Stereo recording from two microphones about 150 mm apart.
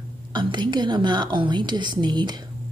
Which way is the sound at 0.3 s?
30° right (ahead or behind).